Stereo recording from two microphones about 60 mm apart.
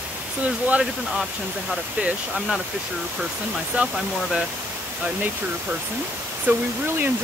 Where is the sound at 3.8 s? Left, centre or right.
Right.